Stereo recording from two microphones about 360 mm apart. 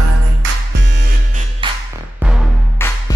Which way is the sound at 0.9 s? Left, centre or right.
Centre.